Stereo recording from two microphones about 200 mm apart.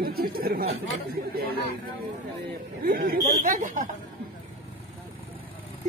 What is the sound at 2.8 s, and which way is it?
Speech, 45° right (ahead or behind).